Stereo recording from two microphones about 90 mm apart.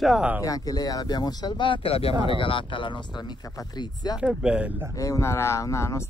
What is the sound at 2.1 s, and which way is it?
Speech, 60° right (ahead or behind).